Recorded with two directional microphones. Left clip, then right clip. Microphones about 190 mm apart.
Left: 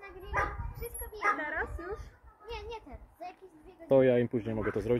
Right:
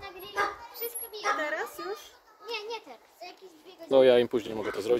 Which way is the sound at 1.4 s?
75° right (ahead or behind).